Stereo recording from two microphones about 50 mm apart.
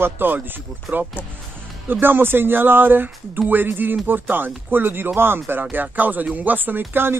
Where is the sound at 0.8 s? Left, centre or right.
Right.